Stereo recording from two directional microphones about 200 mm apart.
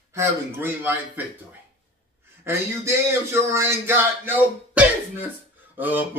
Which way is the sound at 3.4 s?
15° right (ahead or behind).